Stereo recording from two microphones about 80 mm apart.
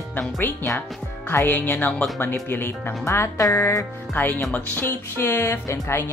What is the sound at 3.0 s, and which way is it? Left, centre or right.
Speech, left.